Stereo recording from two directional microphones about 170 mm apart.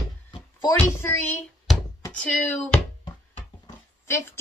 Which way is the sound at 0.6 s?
15° left (ahead or behind).